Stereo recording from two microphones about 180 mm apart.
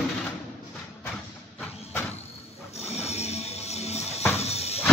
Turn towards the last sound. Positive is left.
turn(degrees=35)  # may be behind; listen again after turning